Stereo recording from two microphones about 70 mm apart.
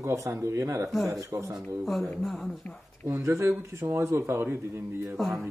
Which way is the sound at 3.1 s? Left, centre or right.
Right.